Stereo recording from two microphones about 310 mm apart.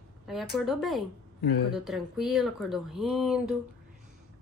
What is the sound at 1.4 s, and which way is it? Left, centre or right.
Speech, left.